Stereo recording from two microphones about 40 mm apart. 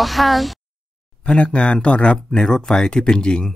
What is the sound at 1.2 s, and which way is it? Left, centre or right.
Speech, left.